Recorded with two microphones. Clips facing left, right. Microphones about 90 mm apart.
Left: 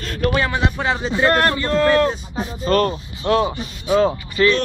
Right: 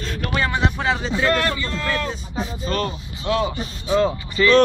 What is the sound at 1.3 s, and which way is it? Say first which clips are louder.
Speech: left 5 dB; 50° left (ahead or behind).